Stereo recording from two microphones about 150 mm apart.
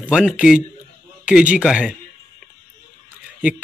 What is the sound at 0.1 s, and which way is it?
Speech, 5° right (ahead or behind).